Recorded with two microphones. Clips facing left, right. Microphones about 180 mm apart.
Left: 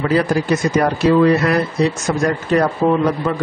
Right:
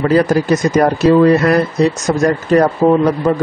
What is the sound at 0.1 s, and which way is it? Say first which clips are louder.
A man's voice: right 4 dB; 45° right (ahead or behind).